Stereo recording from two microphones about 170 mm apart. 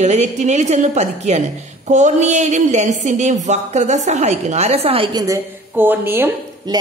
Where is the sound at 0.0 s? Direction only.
40° right (ahead or behind).